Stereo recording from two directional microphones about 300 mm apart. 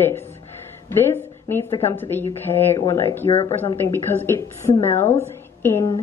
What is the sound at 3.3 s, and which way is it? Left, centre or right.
Speech, centre.